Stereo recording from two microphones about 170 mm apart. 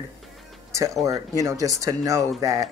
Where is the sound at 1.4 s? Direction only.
20° right (ahead or behind).